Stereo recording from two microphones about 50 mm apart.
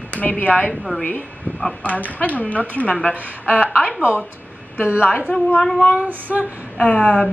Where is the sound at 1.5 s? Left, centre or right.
Left.